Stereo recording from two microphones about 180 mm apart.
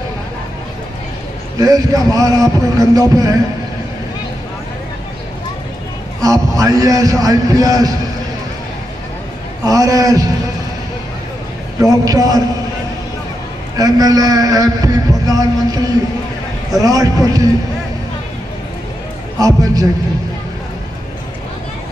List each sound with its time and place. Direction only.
1.6 s a man's voice: 20° right (ahead or behind)
6.2 s a man's voice: 20° right (ahead or behind)
9.7 s a man's voice: 20° right (ahead or behind)
12.0 s a man's voice: 20° right (ahead or behind)
13.7 s a man's voice: 20° right (ahead or behind)
19.4 s a man's voice: 20° right (ahead or behind)